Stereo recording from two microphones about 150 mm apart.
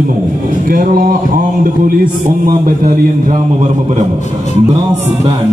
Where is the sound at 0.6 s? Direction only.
70° right (ahead or behind).